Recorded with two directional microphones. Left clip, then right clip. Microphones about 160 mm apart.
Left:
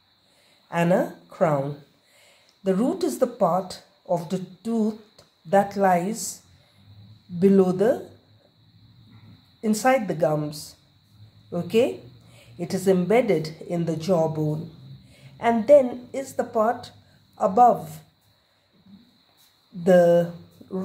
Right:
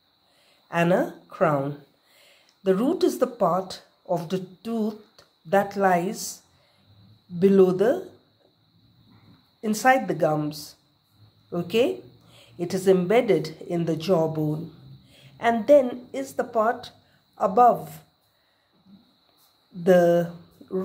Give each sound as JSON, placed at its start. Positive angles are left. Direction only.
{"t": 0.7, "sound": "a woman's voice", "side_deg": -25}
{"t": 9.6, "sound": "a woman's voice", "side_deg": -25}
{"t": 19.8, "sound": "a woman's voice", "side_deg": -25}